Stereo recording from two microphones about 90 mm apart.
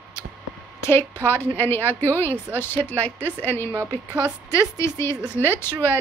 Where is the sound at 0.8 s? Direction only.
30° left (ahead or behind).